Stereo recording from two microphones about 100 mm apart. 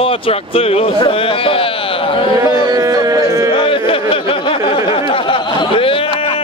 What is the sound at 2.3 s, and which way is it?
Speech, 35° right (ahead or behind).